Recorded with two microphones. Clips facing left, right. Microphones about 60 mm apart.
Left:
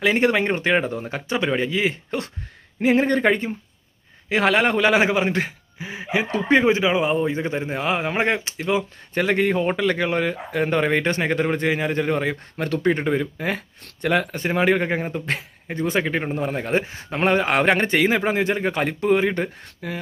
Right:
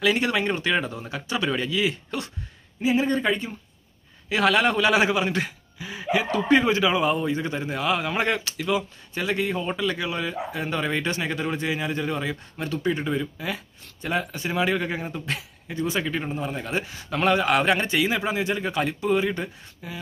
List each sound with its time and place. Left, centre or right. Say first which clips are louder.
0.0 s speech: left 4 dB; left
2.8 s a man's voice: left 4 dB; left
9.2 s a man's voice: left 6 dB; left
13.8 s a man's voice: left 6 dB; left